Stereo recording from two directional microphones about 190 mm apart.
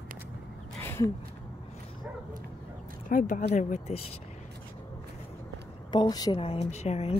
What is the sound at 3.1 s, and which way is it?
Speech, 40° left (ahead or behind).